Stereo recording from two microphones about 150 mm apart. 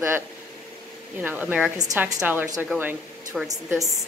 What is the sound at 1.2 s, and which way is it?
Speech, 10° right (ahead or behind).